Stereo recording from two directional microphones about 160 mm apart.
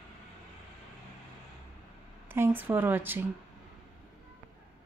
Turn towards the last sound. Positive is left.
turn(degrees=-15)  # may be behind; listen again after turning